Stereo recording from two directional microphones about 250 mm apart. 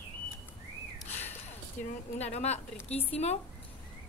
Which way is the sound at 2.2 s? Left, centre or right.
Left.